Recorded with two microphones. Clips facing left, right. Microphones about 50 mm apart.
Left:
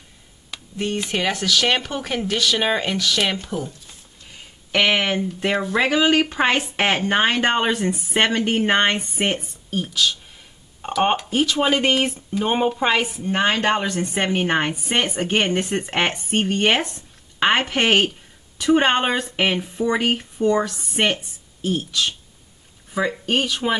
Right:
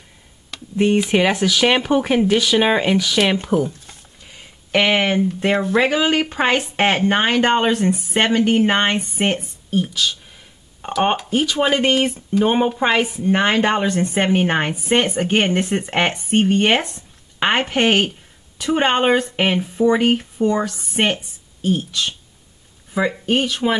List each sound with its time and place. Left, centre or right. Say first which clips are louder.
0.7 s speech: right 8 dB; centre
3.3 s speech: right 9 dB; right
4.7 s speech: right 3 dB; centre
13.3 s a woman's voice: right 2 dB; centre